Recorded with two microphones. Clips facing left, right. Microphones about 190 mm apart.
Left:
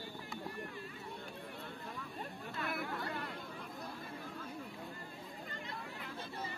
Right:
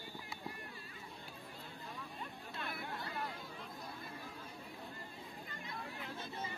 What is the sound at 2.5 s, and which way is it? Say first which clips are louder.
Chatter: left 5 dB; 70° left (ahead or behind).